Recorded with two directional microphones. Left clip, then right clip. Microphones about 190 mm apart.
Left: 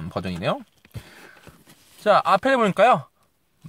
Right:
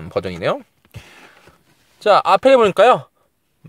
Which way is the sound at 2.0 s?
50° right (ahead or behind).